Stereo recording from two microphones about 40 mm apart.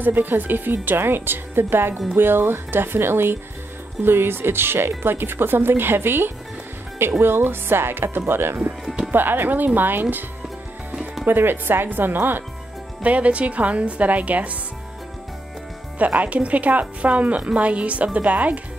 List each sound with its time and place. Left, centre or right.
0.0 s speech: right
9.1 s speech: right
11.2 s speech: right
13.0 s a woman's voice: right
16.0 s a woman's voice: right